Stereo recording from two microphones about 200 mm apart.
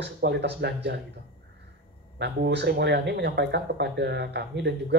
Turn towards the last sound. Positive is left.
turn(degrees=-60)  # may be behind; listen again after turning